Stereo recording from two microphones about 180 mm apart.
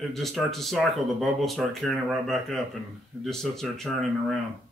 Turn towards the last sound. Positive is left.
turn(degrees=0)  # may be behind; listen again after turning